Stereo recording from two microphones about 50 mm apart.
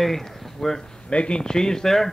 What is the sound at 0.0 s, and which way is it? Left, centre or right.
Speech, centre.